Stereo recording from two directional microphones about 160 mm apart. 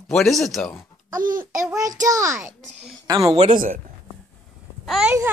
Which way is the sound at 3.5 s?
60° right (ahead or behind).